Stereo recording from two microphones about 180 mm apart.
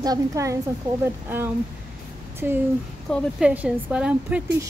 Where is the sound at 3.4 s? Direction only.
5° right (ahead or behind).